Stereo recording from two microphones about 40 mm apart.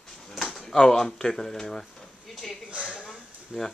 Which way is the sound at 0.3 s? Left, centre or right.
Centre.